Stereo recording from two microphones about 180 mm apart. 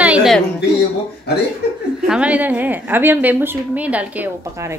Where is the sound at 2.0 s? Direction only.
5° right (ahead or behind).